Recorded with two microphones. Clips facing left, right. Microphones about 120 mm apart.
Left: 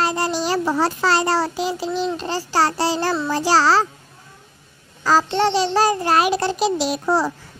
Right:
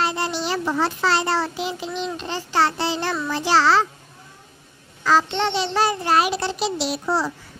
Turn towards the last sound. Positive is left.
turn(degrees=45)  # may be behind; listen again after turning